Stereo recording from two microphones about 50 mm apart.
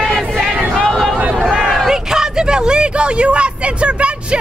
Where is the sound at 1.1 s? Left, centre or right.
Centre.